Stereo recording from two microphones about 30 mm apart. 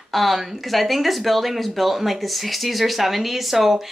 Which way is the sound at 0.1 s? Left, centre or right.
Centre.